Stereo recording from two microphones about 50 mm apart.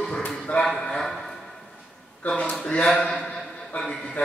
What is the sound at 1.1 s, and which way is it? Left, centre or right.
Music, centre.